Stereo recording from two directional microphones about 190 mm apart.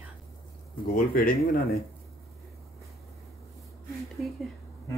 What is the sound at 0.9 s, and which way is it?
Speech, 50° left (ahead or behind).